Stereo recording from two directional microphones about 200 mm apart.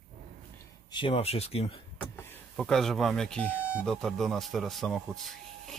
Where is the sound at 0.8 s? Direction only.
25° left (ahead or behind).